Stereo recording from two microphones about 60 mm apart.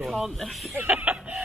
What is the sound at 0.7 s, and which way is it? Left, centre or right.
Chicken, right.